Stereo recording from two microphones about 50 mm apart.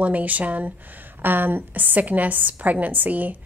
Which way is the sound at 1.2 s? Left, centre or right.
Right.